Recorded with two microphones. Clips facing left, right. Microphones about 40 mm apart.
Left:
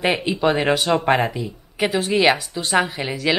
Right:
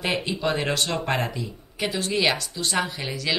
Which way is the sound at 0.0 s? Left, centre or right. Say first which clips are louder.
Left 6 dB; centre.